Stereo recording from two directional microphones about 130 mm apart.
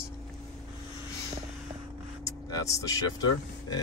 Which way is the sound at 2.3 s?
25° left (ahead or behind).